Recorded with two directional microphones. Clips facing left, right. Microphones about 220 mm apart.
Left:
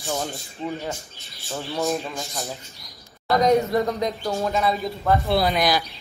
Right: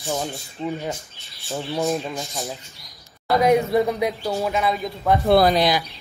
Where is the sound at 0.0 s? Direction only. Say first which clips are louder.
Right 1 dB; 15° right (ahead or behind).